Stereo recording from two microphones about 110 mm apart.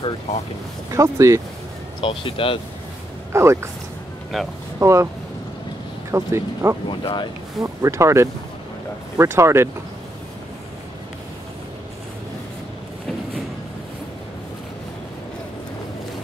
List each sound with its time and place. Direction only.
0.9 s speech: 25° right (ahead or behind)
2.0 s speech: 50° left (ahead or behind)
3.3 s speech: 25° right (ahead or behind)
4.3 s speech: centre (ahead or behind)
4.7 s speech: 25° right (ahead or behind)
6.1 s speech: 25° right (ahead or behind)
6.9 s speech: 50° left (ahead or behind)
7.6 s speech: 30° right (ahead or behind)